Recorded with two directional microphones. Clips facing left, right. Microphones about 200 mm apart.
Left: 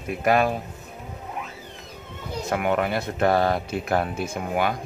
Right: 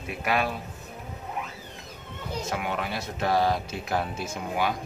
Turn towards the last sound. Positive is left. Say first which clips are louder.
# left 3 dB
turn(degrees=55)  # may be behind; listen again after turning